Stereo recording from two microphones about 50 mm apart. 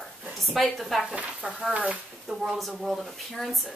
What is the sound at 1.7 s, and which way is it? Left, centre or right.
Speech, right.